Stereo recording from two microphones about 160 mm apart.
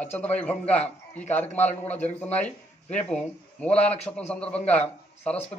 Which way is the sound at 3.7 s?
40° left (ahead or behind).